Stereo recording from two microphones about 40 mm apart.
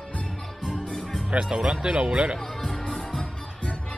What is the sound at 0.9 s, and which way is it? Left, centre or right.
Music, centre.